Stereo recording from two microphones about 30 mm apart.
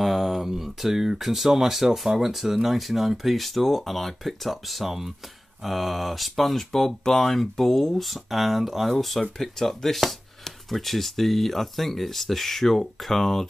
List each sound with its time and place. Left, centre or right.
0.0 s a sound: centre
0.9 s speech: centre
6.7 s speech: centre
9.4 s speech: centre